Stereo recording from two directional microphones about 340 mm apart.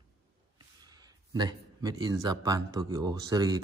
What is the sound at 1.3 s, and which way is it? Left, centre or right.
Speech, centre.